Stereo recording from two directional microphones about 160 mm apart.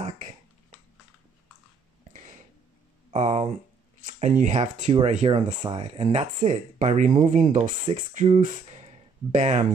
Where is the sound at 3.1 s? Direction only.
40° right (ahead or behind).